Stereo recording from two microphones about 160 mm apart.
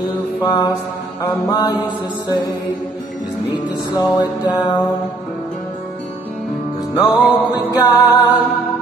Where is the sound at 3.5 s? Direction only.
25° left (ahead or behind).